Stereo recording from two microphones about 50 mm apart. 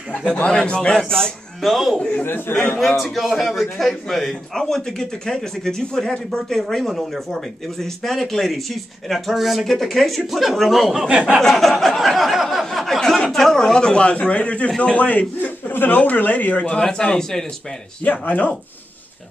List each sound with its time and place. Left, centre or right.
0.4 s a man's voice: centre
2.0 s speech: left
2.2 s a man's voice: left
3.0 s a man's voice: centre
6.7 s a man's voice: centre
11.1 s speech: centre
11.4 s a sound: centre
13.3 s a man's voice: centre; by 16.7 s left
16.7 s a man's voice: centre
18.0 s a man's voice: left